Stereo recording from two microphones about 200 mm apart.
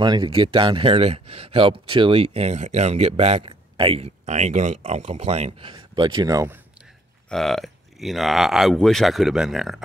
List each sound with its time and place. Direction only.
0.0 s speech: 25° right (ahead or behind)
7.2 s speech: centre (ahead or behind)